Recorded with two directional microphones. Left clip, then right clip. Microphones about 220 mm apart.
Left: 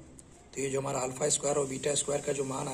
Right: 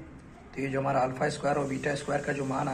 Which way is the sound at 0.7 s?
30° left (ahead or behind).